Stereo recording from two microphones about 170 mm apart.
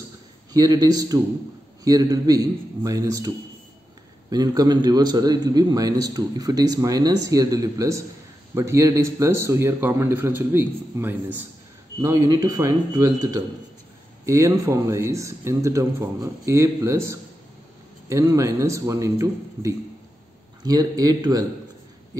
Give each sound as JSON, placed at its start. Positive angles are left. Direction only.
{"t": 0.5, "sound": "a man's voice", "side_deg": -20}
{"t": 4.3, "sound": "a man's voice", "side_deg": -25}